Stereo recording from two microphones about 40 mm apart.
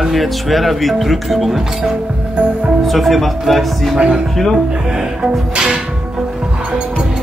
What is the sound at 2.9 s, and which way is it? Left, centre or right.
Speech, centre.